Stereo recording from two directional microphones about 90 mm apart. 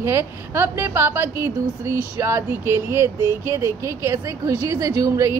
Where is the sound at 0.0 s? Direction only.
25° right (ahead or behind).